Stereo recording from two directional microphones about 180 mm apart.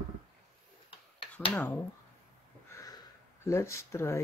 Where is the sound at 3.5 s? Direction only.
15° left (ahead or behind).